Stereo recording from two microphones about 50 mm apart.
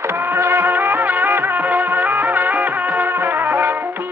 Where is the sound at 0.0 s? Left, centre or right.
Right.